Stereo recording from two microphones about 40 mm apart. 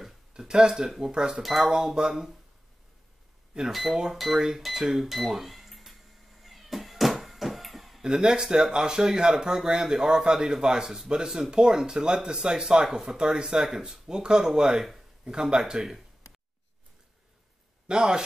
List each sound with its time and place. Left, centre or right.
0.5 s speech: centre
0.8 s speech: centre
1.1 s speech: centre
1.4 s speech: centre
2.0 s speech: right
3.6 s speech: centre
6.4 s cat: centre
8.0 s speech: centre
11.5 s speech: centre
17.8 s speech: right